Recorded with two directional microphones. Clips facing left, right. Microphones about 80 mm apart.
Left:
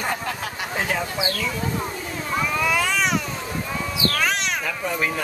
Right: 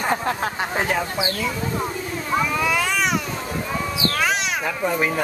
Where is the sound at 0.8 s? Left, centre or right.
Centre.